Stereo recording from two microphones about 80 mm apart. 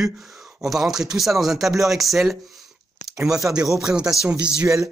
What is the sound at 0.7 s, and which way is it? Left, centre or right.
Speech, centre.